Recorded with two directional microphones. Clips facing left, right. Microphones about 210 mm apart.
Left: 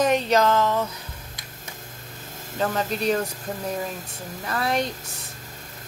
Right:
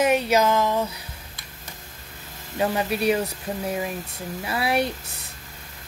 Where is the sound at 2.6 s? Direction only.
10° right (ahead or behind).